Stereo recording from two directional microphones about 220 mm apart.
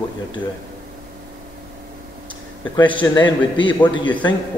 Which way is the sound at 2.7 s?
20° left (ahead or behind).